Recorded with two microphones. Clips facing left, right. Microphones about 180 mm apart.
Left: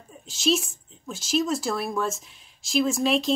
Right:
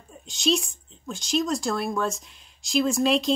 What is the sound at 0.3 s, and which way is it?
A woman's voice, centre (ahead or behind).